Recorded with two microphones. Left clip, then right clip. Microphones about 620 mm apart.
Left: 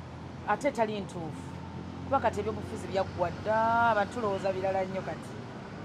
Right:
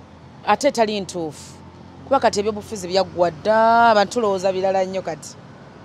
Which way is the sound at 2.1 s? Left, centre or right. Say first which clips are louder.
Right 11 dB; right.